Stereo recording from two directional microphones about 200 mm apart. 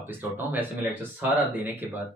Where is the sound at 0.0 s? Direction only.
10° right (ahead or behind).